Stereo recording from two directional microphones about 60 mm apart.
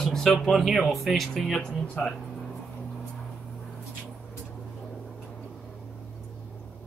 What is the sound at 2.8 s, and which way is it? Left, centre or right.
Vehicle, centre.